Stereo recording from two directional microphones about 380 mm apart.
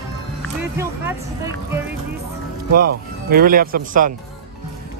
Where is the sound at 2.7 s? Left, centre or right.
Right.